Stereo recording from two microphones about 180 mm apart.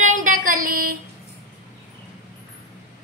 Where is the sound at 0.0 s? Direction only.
45° right (ahead or behind).